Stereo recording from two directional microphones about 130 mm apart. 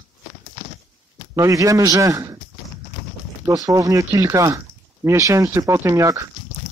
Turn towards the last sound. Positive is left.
turn(degrees=-25)  # may be behind; listen again after turning